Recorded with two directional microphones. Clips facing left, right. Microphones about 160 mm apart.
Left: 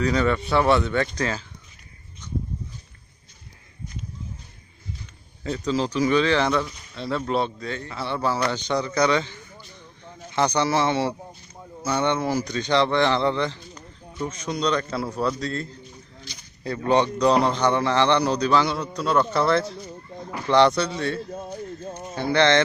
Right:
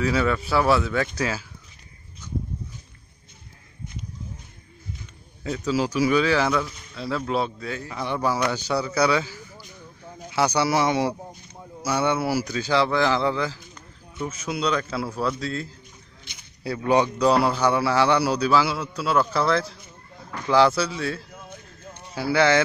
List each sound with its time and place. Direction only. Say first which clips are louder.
0.0 s speech: left 1 dB; 5° right (ahead or behind)
5.7 s speech: even; 10° right (ahead or behind)
21.3 s a sound: left 10 dB; 35° left (ahead or behind)
22.1 s speech: even; 5° right (ahead or behind)